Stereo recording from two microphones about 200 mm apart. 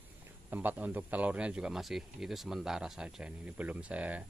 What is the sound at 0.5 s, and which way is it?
Speech, 10° right (ahead or behind).